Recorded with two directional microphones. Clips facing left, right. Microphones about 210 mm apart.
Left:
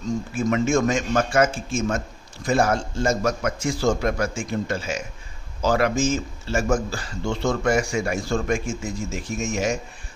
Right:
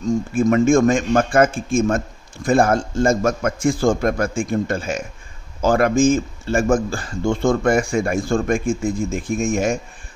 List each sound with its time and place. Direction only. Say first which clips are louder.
0.0 s a man's voice: right 6 dB; 50° right (ahead or behind)